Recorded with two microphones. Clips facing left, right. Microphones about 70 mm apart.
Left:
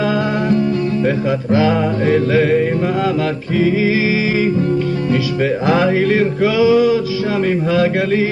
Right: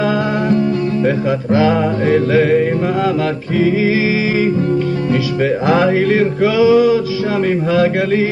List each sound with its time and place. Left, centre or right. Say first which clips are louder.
1.0 s music: right 1 dB; right
5.4 s music: right 2 dB; right